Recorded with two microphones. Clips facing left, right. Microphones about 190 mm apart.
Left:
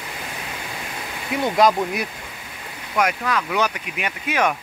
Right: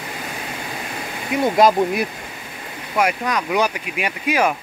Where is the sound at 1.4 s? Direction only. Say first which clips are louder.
Right 3 dB; 25° right (ahead or behind).